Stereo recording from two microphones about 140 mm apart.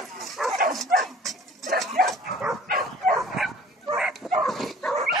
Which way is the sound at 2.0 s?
90° right.